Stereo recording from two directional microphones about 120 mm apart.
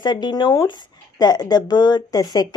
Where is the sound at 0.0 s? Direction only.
35° left (ahead or behind).